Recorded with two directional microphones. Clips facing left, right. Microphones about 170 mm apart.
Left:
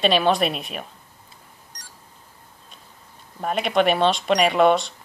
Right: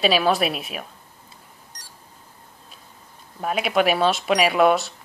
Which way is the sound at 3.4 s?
5° right (ahead or behind).